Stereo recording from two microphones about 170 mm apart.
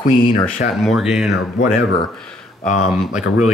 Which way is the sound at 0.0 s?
50° left (ahead or behind).